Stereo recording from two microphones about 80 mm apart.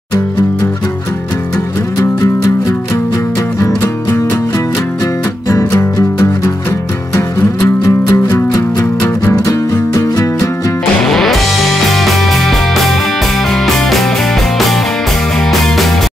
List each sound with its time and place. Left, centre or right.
5.5 s music: left
7.2 s music: left
11.1 s music: centre